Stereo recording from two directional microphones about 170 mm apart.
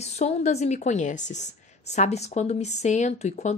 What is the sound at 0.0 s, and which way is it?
A woman's voice, 40° left (ahead or behind).